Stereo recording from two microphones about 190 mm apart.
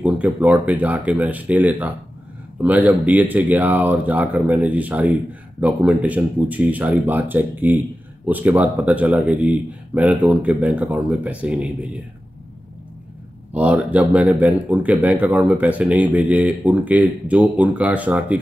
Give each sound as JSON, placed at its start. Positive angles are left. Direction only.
{"t": 0.0, "sound": "speech", "side_deg": -5}
{"t": 13.5, "sound": "speech", "side_deg": -5}